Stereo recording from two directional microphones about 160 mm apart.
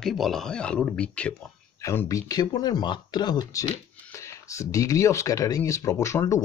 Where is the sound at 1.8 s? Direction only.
20° left (ahead or behind).